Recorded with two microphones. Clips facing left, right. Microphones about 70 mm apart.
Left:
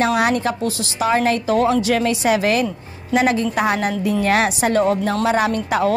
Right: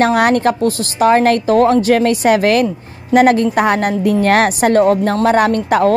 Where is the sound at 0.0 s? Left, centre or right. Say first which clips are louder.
Right 5 dB; right.